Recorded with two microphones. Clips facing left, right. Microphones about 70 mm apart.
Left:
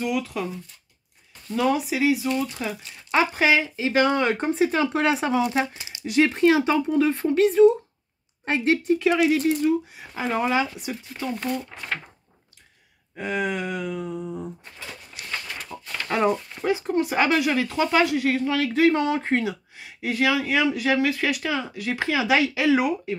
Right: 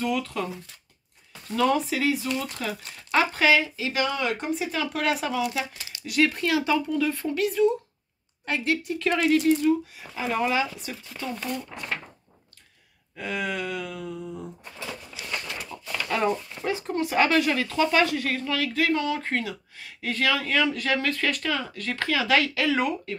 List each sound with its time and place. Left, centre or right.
0.0 s speech: centre
1.6 s speech: centre
3.1 s speech: left
4.8 s speech: left
5.8 s speech: left
8.9 s speech: centre
10.3 s speech: left
13.1 s speech: left
15.7 s a sound: left
16.1 s speech: centre